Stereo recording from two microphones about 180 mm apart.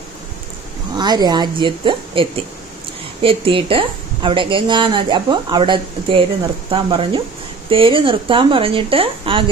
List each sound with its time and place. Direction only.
0.9 s a woman's voice: 25° right (ahead or behind)